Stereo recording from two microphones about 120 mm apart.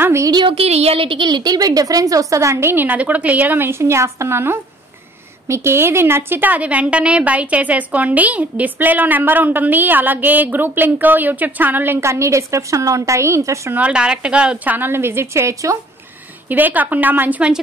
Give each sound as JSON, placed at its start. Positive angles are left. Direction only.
{"t": 0.0, "sound": "a sound", "side_deg": -20}
{"t": 0.3, "sound": "speech", "side_deg": -40}
{"t": 0.6, "sound": "a woman's voice", "side_deg": -60}
{"t": 13.7, "sound": "a woman's voice", "side_deg": -10}
{"t": 16.4, "sound": "a woman's voice", "side_deg": -15}